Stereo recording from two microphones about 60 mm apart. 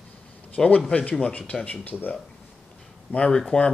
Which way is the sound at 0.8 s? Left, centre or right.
Left.